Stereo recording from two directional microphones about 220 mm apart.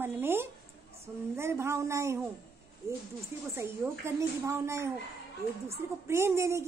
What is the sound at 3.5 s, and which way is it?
A woman's voice, 10° right (ahead or behind).